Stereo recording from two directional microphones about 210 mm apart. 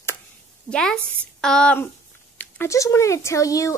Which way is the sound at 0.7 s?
5° left (ahead or behind).